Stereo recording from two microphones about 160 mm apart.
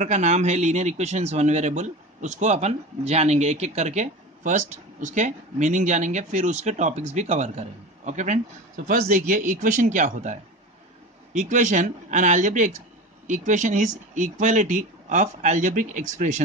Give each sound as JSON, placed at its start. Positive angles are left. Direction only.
{"t": 0.0, "sound": "a man's voice", "side_deg": -45}